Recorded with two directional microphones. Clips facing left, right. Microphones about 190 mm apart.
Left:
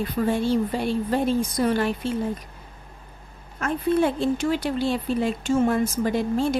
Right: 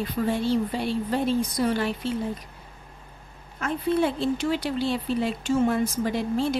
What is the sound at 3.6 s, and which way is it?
A woman's voice, 50° left (ahead or behind).